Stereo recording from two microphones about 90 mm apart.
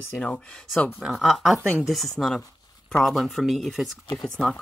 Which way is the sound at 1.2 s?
Centre (ahead or behind).